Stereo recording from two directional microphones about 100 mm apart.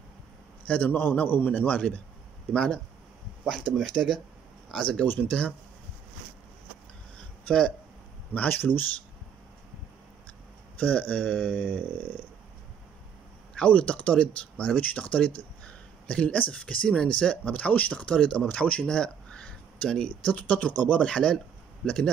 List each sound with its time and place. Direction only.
0.7 s speech: 15° left (ahead or behind)
7.4 s speech: 10° left (ahead or behind)
8.3 s speech: 20° left (ahead or behind)
10.8 s speech: 15° left (ahead or behind)
13.6 s speech: 10° left (ahead or behind)